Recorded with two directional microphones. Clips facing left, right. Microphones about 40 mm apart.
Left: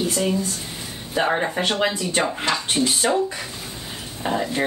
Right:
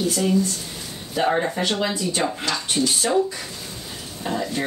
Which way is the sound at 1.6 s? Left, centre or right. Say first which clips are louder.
Left 1 dB; left.